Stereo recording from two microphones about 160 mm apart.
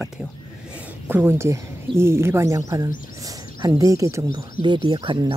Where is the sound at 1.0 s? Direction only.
15° right (ahead or behind).